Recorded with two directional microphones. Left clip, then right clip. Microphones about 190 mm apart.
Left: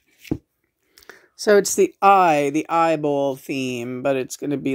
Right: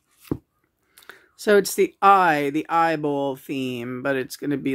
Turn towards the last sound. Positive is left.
turn(degrees=10)  # may be behind; listen again after turning